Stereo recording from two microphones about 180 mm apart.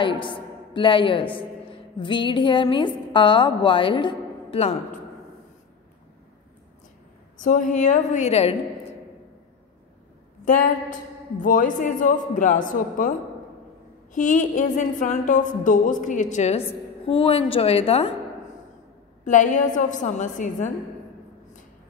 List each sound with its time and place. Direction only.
0.0 s a woman's voice: 25° left (ahead or behind)
7.3 s a woman's voice: 45° left (ahead or behind)
10.4 s a woman's voice: 45° left (ahead or behind)
14.1 s a woman's voice: 45° left (ahead or behind)
19.2 s a woman's voice: 45° left (ahead or behind)